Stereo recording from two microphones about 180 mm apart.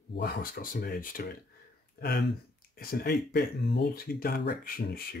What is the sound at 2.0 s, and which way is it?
Speech, 65° left (ahead or behind).